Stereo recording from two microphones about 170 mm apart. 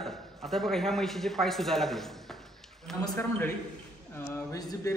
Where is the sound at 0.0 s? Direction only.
Centre (ahead or behind).